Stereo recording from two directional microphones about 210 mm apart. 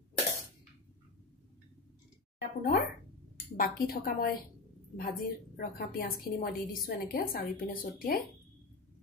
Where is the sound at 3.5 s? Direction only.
45° left (ahead or behind).